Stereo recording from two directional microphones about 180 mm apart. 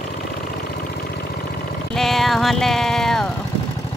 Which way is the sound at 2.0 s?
Centre (ahead or behind).